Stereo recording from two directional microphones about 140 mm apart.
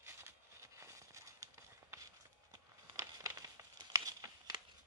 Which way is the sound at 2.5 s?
25° right (ahead or behind).